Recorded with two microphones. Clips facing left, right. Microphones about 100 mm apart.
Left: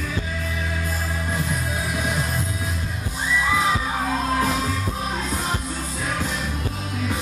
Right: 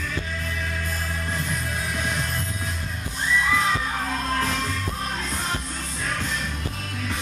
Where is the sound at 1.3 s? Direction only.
5° left (ahead or behind).